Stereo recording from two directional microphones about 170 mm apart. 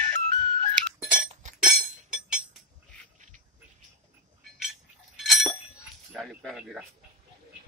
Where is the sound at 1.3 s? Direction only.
45° right (ahead or behind).